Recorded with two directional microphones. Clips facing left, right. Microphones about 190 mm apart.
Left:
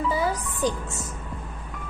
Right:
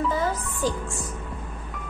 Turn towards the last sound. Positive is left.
turn(degrees=20)  # may be behind; listen again after turning